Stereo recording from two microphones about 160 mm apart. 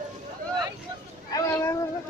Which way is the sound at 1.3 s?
15° left (ahead or behind).